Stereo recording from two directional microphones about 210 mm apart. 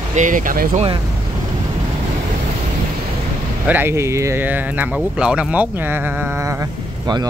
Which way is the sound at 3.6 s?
10° right (ahead or behind).